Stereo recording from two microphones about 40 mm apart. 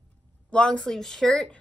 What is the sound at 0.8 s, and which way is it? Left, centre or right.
Speech, centre.